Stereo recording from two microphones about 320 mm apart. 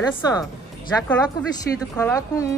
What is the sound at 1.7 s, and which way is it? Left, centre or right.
Speech, centre.